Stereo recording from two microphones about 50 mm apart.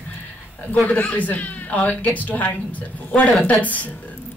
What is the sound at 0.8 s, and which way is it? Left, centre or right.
A woman's voice, left.